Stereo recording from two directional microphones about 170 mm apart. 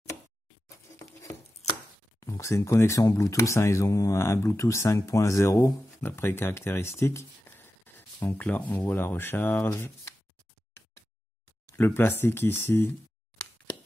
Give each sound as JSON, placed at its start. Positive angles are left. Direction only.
{"t": 2.1, "sound": "speech", "side_deg": 20}
{"t": 11.7, "sound": "speech", "side_deg": 15}